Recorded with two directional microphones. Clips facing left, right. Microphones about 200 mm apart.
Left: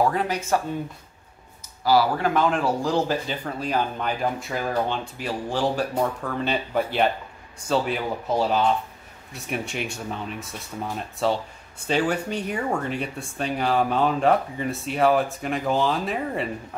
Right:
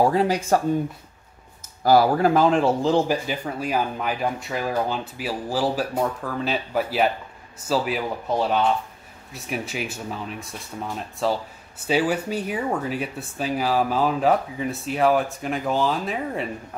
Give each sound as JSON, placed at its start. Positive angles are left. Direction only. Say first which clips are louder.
{"t": 0.0, "sound": "speech", "louder": "right 4 dB", "side_deg": -30}
{"t": 1.8, "sound": "speech", "louder": "right 3 dB", "side_deg": -50}
{"t": 3.3, "sound": "speech", "louder": "right 1 dB", "side_deg": -10}